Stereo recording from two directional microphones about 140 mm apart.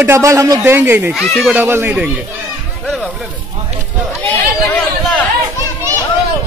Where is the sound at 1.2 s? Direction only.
5° left (ahead or behind).